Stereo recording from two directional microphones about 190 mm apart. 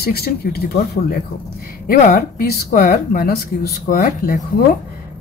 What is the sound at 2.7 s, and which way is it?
Speech, 40° left (ahead or behind).